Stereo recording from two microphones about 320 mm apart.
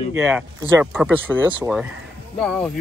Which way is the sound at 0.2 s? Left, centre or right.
Centre.